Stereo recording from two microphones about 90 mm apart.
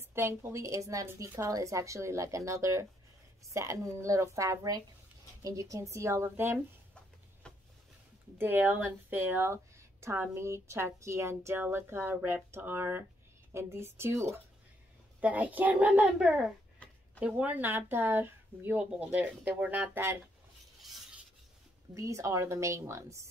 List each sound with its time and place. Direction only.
0.1 s speech: 25° right (ahead or behind)
7.4 s a sound: 10° left (ahead or behind)
8.4 s speech: 20° right (ahead or behind)
15.1 s a child's voice: 15° right (ahead or behind)
18.8 s a child's voice: 15° right (ahead or behind)
21.9 s speech: 35° right (ahead or behind)